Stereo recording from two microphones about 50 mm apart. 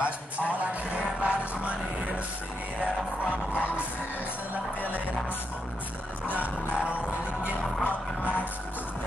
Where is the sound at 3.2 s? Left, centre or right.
Left.